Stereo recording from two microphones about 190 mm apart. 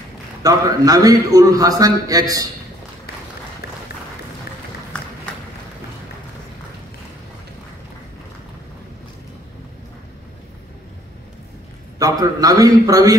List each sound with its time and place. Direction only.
0.4 s a man's voice: 20° right (ahead or behind)
12.0 s a man's voice: 20° right (ahead or behind)